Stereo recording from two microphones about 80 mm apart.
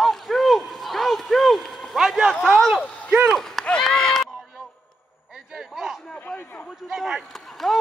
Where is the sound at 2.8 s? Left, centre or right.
Centre.